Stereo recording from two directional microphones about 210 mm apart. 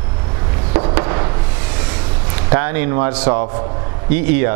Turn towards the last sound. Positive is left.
turn(degrees=-10)  # may be behind; listen again after turning